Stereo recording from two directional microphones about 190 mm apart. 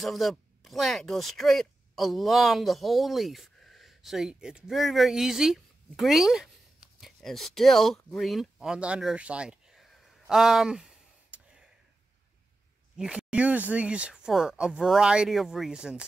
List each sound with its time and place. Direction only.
0.0 s speech: centre (ahead or behind)
8.1 s a sound: centre (ahead or behind)
12.9 s speech: 5° right (ahead or behind)